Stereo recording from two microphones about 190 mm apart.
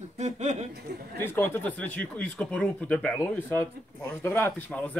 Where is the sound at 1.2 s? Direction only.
10° left (ahead or behind).